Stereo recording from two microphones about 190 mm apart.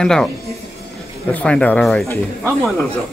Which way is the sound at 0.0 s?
5° left (ahead or behind).